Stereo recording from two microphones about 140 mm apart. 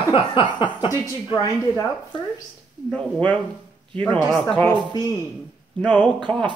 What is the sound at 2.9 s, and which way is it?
Speech, 10° left (ahead or behind).